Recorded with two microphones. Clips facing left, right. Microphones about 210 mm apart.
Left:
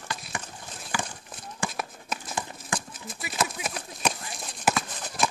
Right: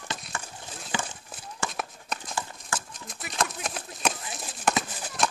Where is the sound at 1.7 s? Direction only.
Centre (ahead or behind).